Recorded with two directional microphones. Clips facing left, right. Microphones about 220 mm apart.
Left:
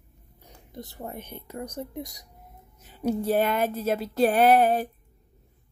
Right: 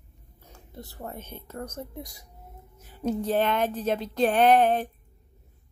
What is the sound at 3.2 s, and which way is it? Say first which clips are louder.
A woman's voice: left 1 dB; 10° left (ahead or behind).